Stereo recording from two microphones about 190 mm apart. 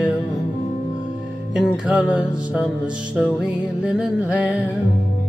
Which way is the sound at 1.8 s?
5° right (ahead or behind).